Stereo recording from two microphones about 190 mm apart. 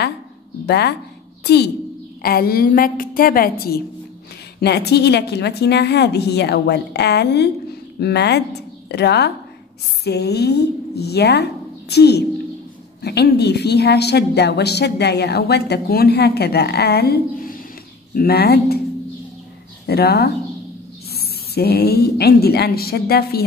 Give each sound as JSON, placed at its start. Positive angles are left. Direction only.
{"t": 0.7, "sound": "a woman's voice", "side_deg": 60}
{"t": 19.9, "sound": "a woman's voice", "side_deg": 55}